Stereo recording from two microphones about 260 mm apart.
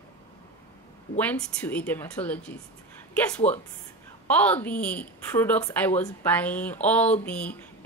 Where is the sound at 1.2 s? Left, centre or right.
Centre.